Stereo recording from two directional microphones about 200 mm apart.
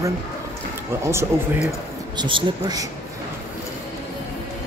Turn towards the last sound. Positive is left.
turn(degrees=-20)  # may be behind; listen again after turning